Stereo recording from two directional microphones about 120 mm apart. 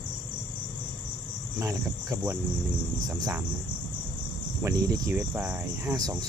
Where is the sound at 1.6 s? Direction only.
25° right (ahead or behind).